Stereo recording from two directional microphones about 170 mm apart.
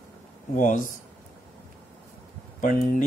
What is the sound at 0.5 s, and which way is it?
Speech, 50° left (ahead or behind).